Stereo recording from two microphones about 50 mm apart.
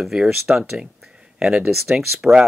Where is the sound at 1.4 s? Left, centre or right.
Centre.